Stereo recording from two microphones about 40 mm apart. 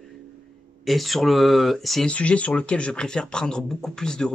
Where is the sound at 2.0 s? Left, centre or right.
Left.